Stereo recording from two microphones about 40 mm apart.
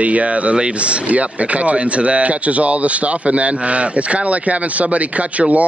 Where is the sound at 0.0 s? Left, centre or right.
Right.